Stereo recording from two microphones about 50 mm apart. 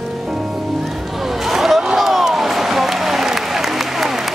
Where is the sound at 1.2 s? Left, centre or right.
Centre.